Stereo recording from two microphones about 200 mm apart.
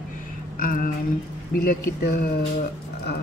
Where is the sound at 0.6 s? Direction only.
45° left (ahead or behind).